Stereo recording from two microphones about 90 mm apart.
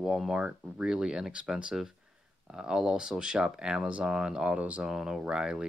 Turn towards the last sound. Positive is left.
turn(degrees=-10)  # may be behind; listen again after turning